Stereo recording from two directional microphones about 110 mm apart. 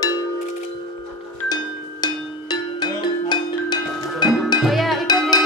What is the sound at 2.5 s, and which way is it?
Music, 40° left (ahead or behind).